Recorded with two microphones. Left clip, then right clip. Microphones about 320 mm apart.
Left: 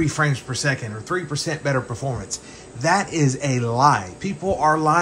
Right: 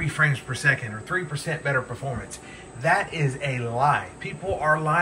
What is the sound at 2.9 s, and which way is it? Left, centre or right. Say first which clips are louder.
A man's voice: left 3 dB; left.